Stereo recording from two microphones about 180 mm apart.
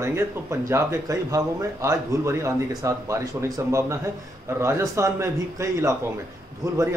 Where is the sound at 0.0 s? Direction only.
15° right (ahead or behind).